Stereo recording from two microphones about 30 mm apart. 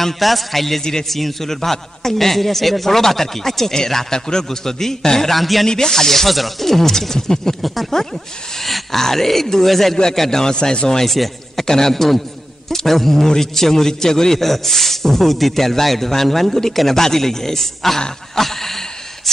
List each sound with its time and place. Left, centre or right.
0.2 s a man's voice: centre
5.3 s a man's voice: centre
5.7 s a man's voice: centre
7.6 s a man's voice: centre
7.9 s a man's voice: centre
10.4 s speech: left
11.1 s speech: centre
11.6 s a man's voice: centre
18.3 s a sound: centre